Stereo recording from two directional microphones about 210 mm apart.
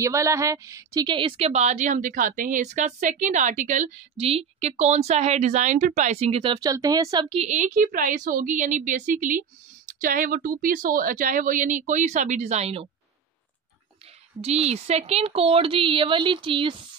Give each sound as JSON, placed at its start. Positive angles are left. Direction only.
{"t": 0.0, "sound": "a woman's voice", "side_deg": -15}
{"t": 14.4, "sound": "a woman's voice", "side_deg": -30}